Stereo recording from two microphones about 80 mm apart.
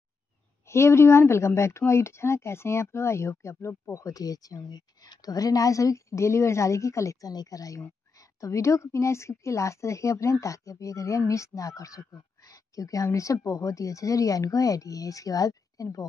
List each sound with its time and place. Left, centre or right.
0.7 s speech: left